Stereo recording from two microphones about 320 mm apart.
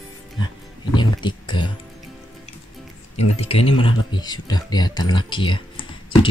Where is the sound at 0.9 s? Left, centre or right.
Centre.